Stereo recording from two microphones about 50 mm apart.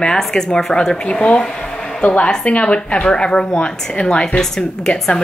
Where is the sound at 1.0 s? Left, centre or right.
Left.